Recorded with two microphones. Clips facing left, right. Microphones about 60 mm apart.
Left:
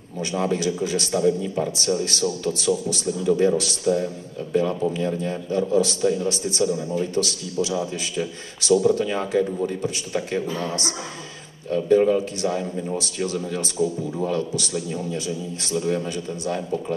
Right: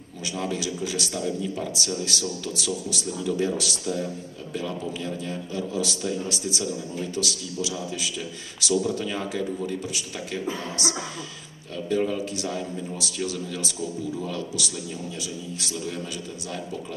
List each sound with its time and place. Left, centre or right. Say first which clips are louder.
0.2 s a man's voice: left 6 dB; left